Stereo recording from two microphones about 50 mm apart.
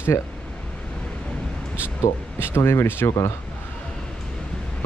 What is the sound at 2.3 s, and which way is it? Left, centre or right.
Speech, left.